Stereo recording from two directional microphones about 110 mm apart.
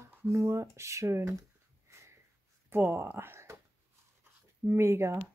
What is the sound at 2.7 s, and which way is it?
Speech, 20° right (ahead or behind).